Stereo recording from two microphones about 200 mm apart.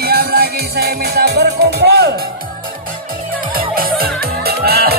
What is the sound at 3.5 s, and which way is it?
Music, 45° right (ahead or behind).